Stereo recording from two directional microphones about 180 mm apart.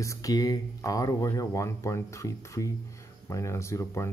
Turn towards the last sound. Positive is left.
turn(degrees=15)  # may be behind; listen again after turning